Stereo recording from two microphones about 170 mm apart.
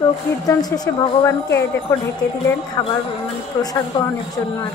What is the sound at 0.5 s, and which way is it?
A woman's voice, 20° left (ahead or behind).